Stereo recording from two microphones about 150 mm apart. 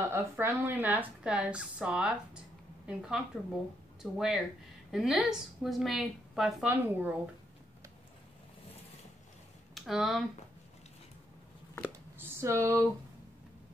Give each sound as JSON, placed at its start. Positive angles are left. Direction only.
{"t": 0.1, "sound": "a woman's voice", "side_deg": -15}
{"t": 9.8, "sound": "speech", "side_deg": 0}
{"t": 11.8, "sound": "a sound", "side_deg": -15}